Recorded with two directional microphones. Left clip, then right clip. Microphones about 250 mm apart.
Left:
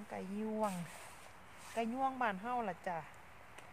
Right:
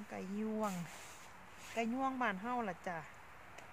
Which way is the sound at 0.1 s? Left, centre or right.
Centre.